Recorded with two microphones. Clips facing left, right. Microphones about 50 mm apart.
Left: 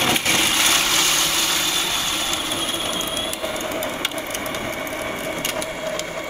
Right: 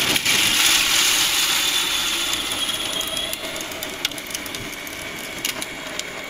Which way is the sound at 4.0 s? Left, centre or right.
Centre.